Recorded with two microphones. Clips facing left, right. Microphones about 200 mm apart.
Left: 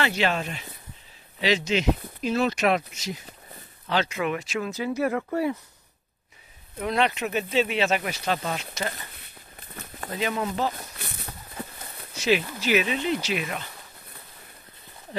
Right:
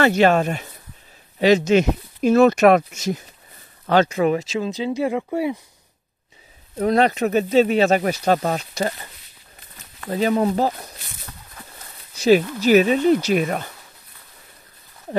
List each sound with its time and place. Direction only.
0.0 s speech: 50° right (ahead or behind)
4.6 s speech: 20° right (ahead or behind)
6.8 s speech: 40° right (ahead or behind)
10.0 s speech: 40° right (ahead or behind)
12.2 s speech: 40° right (ahead or behind)